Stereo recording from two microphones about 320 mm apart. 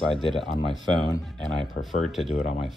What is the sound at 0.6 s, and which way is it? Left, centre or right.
Speech, centre.